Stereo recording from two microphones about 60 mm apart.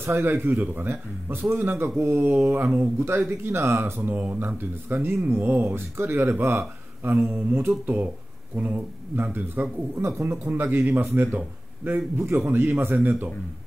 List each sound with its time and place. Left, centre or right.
0.0 s speech: right
5.9 s speech: right
10.0 s a man's voice: right
10.4 s a man's voice: right